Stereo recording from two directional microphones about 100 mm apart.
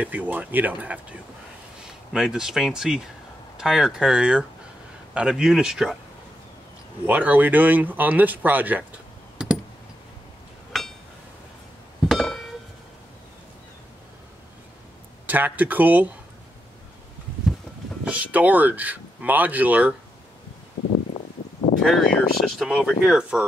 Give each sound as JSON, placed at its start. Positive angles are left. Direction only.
{"t": 0.0, "sound": "speech", "side_deg": -15}
{"t": 2.1, "sound": "speech", "side_deg": -5}
{"t": 7.1, "sound": "speech", "side_deg": -15}
{"t": 9.4, "sound": "a sound", "side_deg": -10}
{"t": 10.7, "sound": "a sound", "side_deg": 0}
{"t": 12.1, "sound": "a sound", "side_deg": 0}
{"t": 15.2, "sound": "speech", "side_deg": -20}
{"t": 18.0, "sound": "speech", "side_deg": -15}
{"t": 21.8, "sound": "speech", "side_deg": 0}